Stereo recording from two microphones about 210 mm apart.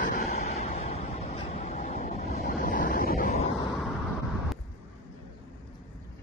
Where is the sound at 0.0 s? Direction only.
45° left (ahead or behind).